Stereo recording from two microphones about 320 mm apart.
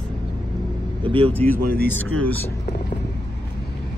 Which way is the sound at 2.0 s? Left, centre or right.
Right.